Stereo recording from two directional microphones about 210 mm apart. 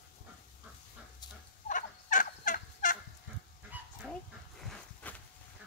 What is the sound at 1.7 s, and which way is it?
Turkey, 40° left (ahead or behind).